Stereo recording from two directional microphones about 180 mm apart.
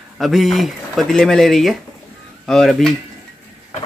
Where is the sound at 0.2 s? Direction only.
Centre (ahead or behind).